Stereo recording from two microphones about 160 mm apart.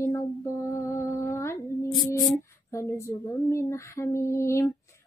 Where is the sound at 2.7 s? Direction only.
15° left (ahead or behind).